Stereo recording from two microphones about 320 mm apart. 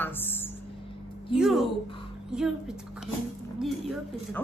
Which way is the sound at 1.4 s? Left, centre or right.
Centre.